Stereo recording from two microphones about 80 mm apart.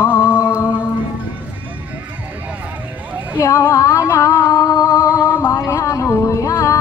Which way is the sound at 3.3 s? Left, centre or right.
Left.